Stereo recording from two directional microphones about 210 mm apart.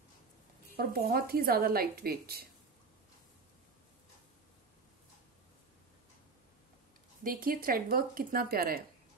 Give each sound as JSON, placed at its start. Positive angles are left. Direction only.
{"t": 0.7, "sound": "a woman's voice", "side_deg": -45}
{"t": 7.2, "sound": "a woman's voice", "side_deg": -40}